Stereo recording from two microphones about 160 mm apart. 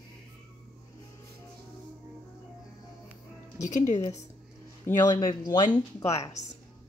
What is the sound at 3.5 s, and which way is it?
Speech, 45° left (ahead or behind).